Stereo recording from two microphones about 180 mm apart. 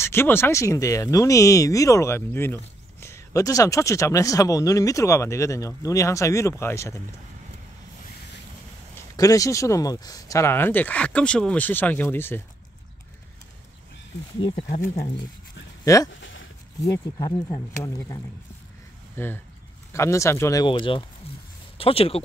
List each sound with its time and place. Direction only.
0.0 s speech: 15° left (ahead or behind)
8.9 s speech: 20° left (ahead or behind)
15.8 s speech: 20° left (ahead or behind)
16.1 s a sound: 90° left
16.8 s speech: 20° left (ahead or behind)